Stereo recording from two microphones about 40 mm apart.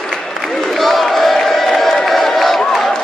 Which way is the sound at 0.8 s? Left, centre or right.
Centre.